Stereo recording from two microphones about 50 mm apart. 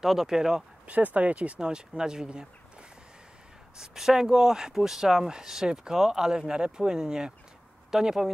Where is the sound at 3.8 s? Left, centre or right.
Centre.